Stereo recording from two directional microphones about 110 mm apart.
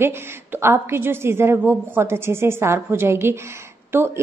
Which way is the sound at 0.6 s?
20° right (ahead or behind).